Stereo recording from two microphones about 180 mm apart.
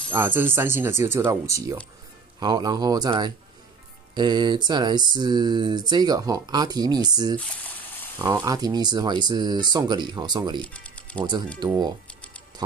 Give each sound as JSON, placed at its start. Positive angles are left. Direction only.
{"t": 0.1, "sound": "speech", "side_deg": -10}
{"t": 2.4, "sound": "a sound", "side_deg": -20}
{"t": 10.6, "sound": "speech", "side_deg": 5}